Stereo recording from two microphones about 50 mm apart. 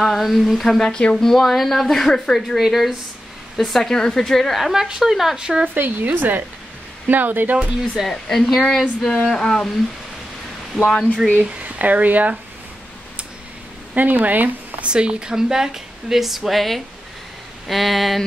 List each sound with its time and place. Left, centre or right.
0.0 s a woman's voice: centre
5.8 s speech: right
7.5 s speech: right
8.1 s a woman's voice: centre
9.1 s a woman's voice: centre
10.8 s a woman's voice: centre
11.6 s speech: right
13.9 s speech: right
14.9 s a woman's voice: centre